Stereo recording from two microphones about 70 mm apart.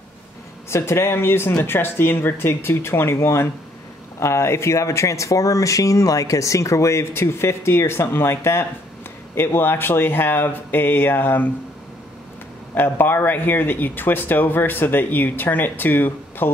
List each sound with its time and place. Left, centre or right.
0.7 s speech: left
12.7 s speech: left